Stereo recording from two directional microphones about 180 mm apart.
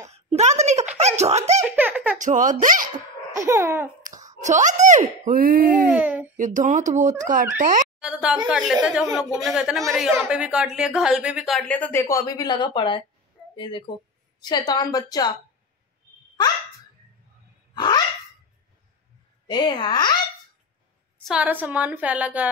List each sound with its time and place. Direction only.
0.1 s a sound: 35° right (ahead or behind)
1.0 s speech: 40° right (ahead or behind)
1.8 s speech: 10° right (ahead or behind)
2.1 s speech: 45° right (ahead or behind)
3.3 s a woman's voice: 15° right (ahead or behind)
4.0 s hands: 45° right (ahead or behind)
4.4 s speech: 45° right (ahead or behind)
5.9 s a woman's voice: 10° right (ahead or behind)
6.3 s speech: 45° right (ahead or behind)
8.0 s a woman's voice: 5° right (ahead or behind); by 15.3 s 20° left (ahead or behind)
17.7 s a sound: 25° left (ahead or behind)
19.5 s speech: 25° left (ahead or behind)
21.2 s a woman's voice: 5° right (ahead or behind)